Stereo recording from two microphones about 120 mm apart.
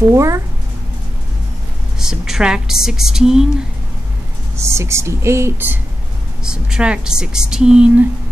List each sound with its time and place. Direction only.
0.1 s speech: 25° right (ahead or behind)
2.0 s a woman's voice: 5° right (ahead or behind)
4.6 s speech: 25° right (ahead or behind)
6.4 s a woman's voice: 5° right (ahead or behind)